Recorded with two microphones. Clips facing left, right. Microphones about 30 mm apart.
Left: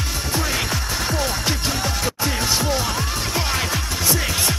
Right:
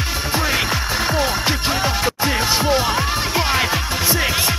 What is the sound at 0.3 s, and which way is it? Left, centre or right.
Music, right.